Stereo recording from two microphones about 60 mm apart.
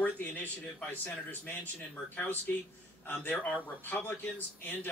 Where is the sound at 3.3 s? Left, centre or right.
Left.